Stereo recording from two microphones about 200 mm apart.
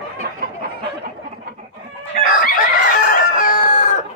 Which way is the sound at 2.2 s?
45° left (ahead or behind).